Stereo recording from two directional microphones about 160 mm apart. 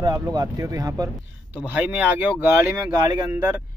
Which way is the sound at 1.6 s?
10° right (ahead or behind).